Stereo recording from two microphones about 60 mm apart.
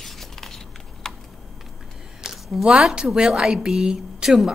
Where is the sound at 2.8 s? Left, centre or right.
Centre.